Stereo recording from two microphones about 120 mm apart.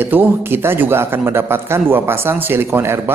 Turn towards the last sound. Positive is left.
turn(degrees=-20)  # may be behind; listen again after turning